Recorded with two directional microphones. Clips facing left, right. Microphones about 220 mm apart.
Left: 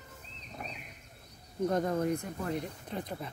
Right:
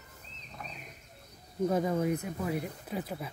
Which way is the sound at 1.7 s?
5° right (ahead or behind).